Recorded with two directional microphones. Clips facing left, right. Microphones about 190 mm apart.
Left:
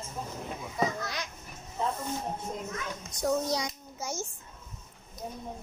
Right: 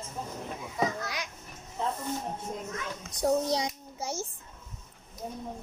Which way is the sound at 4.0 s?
30° right (ahead or behind).